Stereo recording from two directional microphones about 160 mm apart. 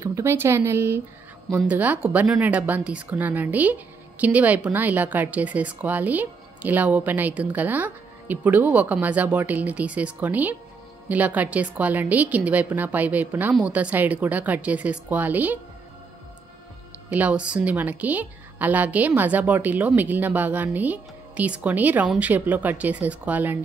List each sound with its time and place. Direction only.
0.0 s speech: 15° right (ahead or behind)
17.1 s speech: 10° right (ahead or behind)